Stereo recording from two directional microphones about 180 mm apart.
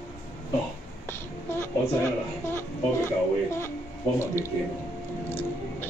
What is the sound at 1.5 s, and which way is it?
A woman's voice, 15° left (ahead or behind).